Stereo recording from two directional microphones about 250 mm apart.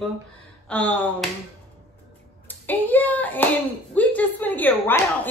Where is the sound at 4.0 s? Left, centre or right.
Centre.